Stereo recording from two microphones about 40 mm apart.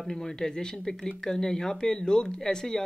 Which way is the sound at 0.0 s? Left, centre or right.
Centre.